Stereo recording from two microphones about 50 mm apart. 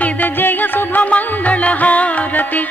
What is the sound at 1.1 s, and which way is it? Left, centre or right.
Music, left.